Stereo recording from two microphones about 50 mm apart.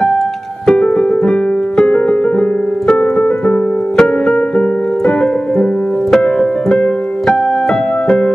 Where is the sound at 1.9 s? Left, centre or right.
Left.